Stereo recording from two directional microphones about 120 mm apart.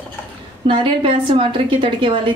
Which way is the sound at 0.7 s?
45° right (ahead or behind).